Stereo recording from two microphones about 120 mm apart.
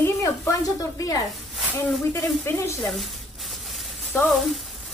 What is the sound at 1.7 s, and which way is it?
Speech, 20° left (ahead or behind).